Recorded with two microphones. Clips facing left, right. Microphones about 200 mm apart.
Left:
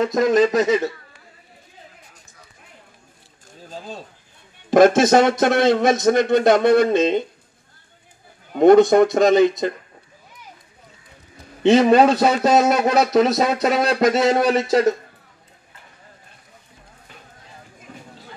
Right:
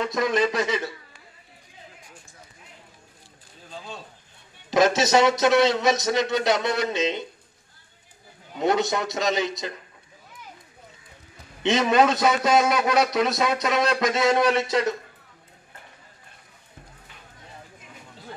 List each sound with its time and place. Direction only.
0.3 s a man's voice: 45° left (ahead or behind)
3.6 s a sound: 40° left (ahead or behind)
4.6 s a man's voice: 50° left (ahead or behind)
8.5 s a man's voice: 50° left (ahead or behind)
11.6 s a man's voice: 35° left (ahead or behind)
14.7 s a man's voice: 45° left (ahead or behind)
17.9 s a sound: 45° left (ahead or behind)